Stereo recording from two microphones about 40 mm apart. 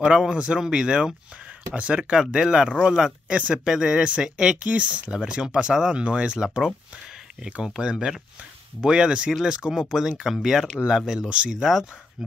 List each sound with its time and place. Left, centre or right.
0.0 s speech: right
2.1 s speech: centre
4.6 s speech: right
5.1 s speech: centre
7.6 s speech: centre
10.3 s speech: centre
10.9 s speech: centre
11.5 s speech: centre